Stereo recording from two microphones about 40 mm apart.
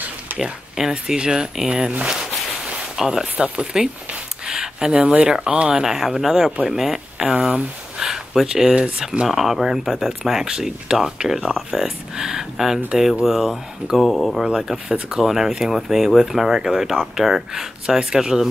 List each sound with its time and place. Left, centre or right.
0.4 s speech: centre
3.0 s speech: centre
4.5 s a sound: centre
5.2 s speech: right
5.8 s speech: centre
8.0 s a sound: centre
9.3 s speech: centre
14.0 s speech: centre
14.4 s speech: centre